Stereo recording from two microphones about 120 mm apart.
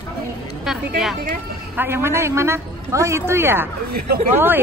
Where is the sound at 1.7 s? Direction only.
20° right (ahead or behind).